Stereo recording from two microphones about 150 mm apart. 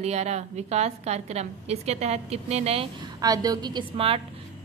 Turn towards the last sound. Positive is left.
turn(degrees=-40)  # may be behind; listen again after turning